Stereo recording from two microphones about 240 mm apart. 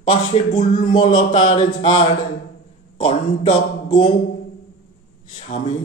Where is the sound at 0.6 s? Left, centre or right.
Left.